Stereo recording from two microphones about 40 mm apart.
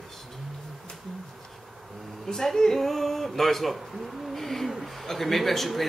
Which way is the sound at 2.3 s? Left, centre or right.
Centre.